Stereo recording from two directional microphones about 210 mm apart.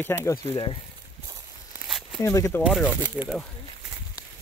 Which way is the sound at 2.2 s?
15° left (ahead or behind).